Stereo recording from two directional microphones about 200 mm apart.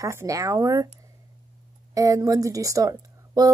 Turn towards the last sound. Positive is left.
turn(degrees=-20)  # may be behind; listen again after turning